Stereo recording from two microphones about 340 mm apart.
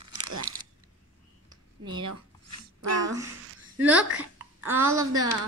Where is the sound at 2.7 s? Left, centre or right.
Right.